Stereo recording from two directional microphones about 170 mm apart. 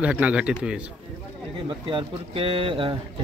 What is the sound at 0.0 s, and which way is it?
Speech, 5° right (ahead or behind).